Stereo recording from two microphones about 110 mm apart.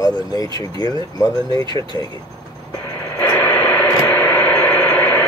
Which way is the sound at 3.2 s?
15° left (ahead or behind).